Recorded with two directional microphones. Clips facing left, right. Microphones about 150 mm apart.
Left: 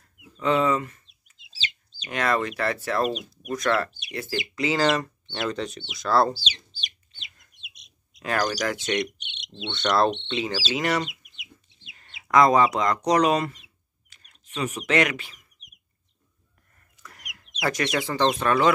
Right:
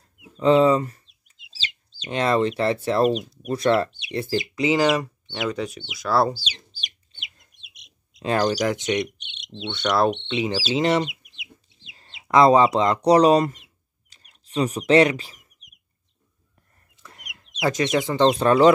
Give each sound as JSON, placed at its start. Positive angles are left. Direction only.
{"t": 0.2, "sound": "speech", "side_deg": -30}
{"t": 7.2, "sound": "bird", "side_deg": -25}
{"t": 9.7, "sound": "speech", "side_deg": -10}
{"t": 14.1, "sound": "a sound", "side_deg": -35}
{"t": 14.6, "sound": "speech", "side_deg": -35}
{"t": 17.0, "sound": "chicken", "side_deg": -25}
{"t": 17.5, "sound": "speech", "side_deg": -20}
{"t": 18.4, "sound": "speech", "side_deg": -30}